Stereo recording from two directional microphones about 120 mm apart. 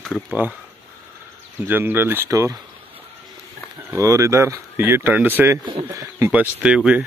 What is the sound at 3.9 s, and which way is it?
Speech, 25° right (ahead or behind).